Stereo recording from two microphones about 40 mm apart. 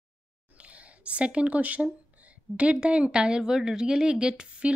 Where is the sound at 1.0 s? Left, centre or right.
Right.